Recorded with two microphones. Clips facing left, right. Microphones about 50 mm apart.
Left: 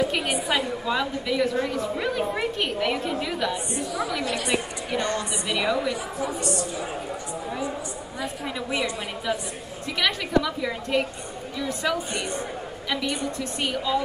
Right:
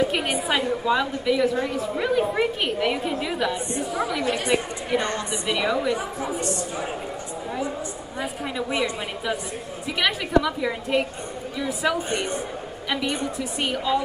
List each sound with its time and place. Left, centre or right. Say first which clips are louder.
0.5 s a woman's voice: right 6 dB; centre
4.2 s a woman's voice: right 3 dB; right
5.5 s a woman's voice: right 2 dB; centre
6.4 s a woman's voice: even; right
9.9 s a woman's voice: right 2 dB; centre
12.9 s a woman's voice: right 2 dB; right
13.4 s a woman's voice: right 1 dB; centre